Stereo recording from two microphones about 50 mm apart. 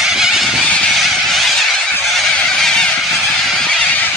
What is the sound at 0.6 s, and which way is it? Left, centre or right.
Honk, left.